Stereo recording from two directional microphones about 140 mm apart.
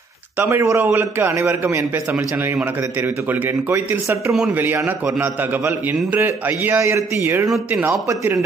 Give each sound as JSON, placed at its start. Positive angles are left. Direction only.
{"t": 0.4, "sound": "a man's voice", "side_deg": -15}